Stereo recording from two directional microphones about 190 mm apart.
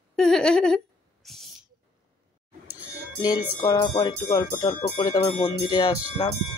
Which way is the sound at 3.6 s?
25° left (ahead or behind).